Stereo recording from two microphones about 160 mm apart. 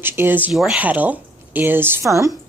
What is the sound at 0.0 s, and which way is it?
Speech, 15° right (ahead or behind).